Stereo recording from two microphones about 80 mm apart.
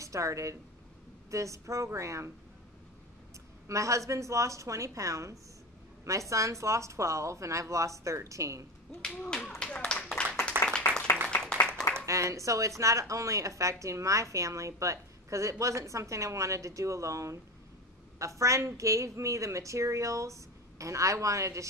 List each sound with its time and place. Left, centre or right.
0.0 s a woman's voice: right
3.6 s a woman's voice: right
9.0 s speech: centre
9.6 s clapping: centre
10.8 s applause: left
12.1 s a woman's voice: right